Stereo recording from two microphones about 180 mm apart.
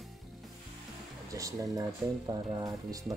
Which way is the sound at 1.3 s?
20° right (ahead or behind).